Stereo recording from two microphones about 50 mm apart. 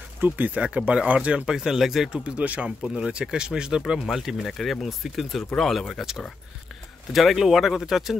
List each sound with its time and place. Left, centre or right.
0.2 s speech: right
0.6 s speech: right
1.6 s speech: centre
2.2 s speech: right
3.0 s speech: centre
7.1 s speech: centre